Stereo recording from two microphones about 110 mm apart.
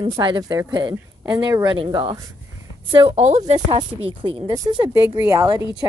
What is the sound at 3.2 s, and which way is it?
Speech, 80° right.